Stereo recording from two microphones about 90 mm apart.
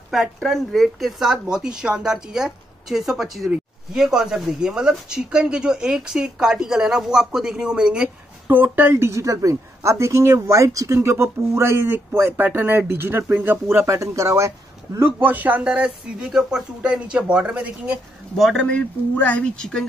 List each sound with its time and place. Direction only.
0.1 s speech: centre (ahead or behind)
8.5 s speech: 20° right (ahead or behind)
13.8 s speech: 35° right (ahead or behind); by 17.9 s 15° right (ahead or behind)
18.6 s speech: 15° left (ahead or behind)